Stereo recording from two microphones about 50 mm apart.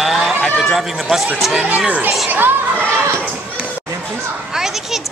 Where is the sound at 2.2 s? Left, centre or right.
Right.